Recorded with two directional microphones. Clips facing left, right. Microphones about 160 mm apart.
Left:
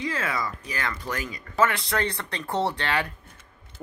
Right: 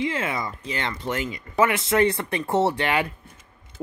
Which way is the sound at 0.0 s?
25° right (ahead or behind).